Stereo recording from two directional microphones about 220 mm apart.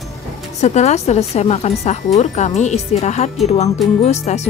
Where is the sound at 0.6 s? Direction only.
30° left (ahead or behind).